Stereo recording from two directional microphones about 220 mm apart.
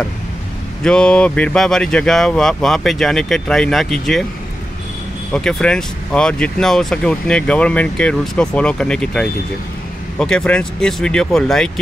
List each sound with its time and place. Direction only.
0.8 s speech: 5° left (ahead or behind)
5.3 s speech: 5° left (ahead or behind)